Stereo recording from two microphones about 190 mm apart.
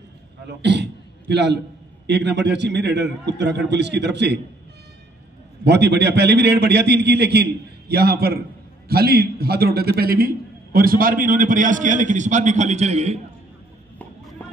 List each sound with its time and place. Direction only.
0.6 s a man's voice: 65° right (ahead or behind)
5.6 s a man's voice: 60° right (ahead or behind); by 13.2 s 35° right (ahead or behind)